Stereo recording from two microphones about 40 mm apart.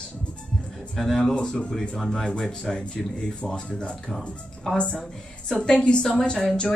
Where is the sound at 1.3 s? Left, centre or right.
Centre.